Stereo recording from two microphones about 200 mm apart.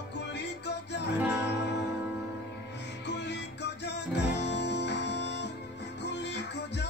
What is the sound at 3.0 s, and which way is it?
Music, 60° left (ahead or behind).